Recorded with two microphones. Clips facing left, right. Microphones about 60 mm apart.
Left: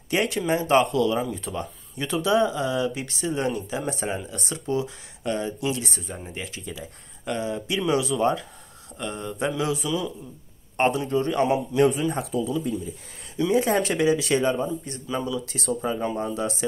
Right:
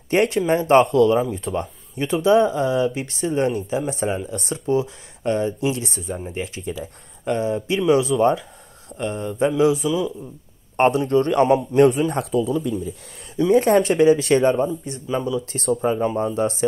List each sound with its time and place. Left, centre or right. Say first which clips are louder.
0.1 s speech: right 5 dB; right
7.2 s speech: right 6 dB; right
9.8 s a man's voice: right 5 dB; centre
10.9 s a man's voice: right 7 dB; right
13.4 s speech: right 6 dB; right
14.9 s speech: right 5 dB; centre
15.5 s speech: right 8 dB; right
16.0 s speech: right 6 dB; right